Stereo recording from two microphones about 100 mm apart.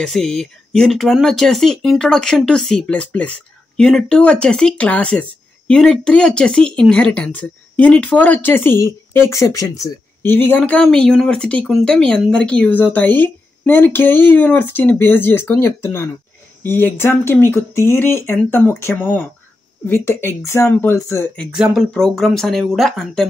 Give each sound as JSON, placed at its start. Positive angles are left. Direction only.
{"t": 0.0, "sound": "speech", "side_deg": 5}
{"t": 10.2, "sound": "speech", "side_deg": 20}
{"t": 10.6, "sound": "speech", "side_deg": 10}
{"t": 21.5, "sound": "speech", "side_deg": -5}